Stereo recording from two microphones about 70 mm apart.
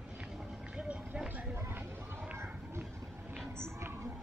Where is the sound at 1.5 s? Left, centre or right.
Right.